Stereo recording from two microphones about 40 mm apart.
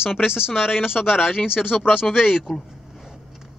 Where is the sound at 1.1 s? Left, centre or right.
Left.